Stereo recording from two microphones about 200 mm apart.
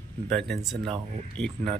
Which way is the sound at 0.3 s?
5° left (ahead or behind).